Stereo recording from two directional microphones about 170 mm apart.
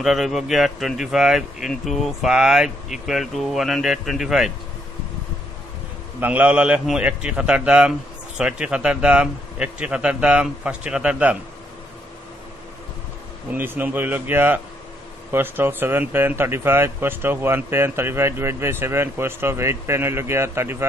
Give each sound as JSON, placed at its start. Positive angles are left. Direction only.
{"t": 0.0, "sound": "speech", "side_deg": 0}
{"t": 6.2, "sound": "speech", "side_deg": -10}
{"t": 13.5, "sound": "speech", "side_deg": -10}